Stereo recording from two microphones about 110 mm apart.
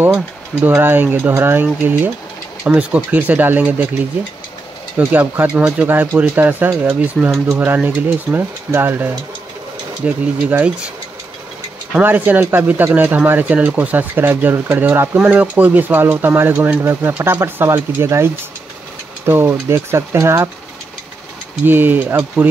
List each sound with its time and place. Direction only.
0.0 s speech: 20° right (ahead or behind)
4.9 s speech: 15° right (ahead or behind)
12.0 s speech: 15° right (ahead or behind)
21.6 s speech: 15° right (ahead or behind)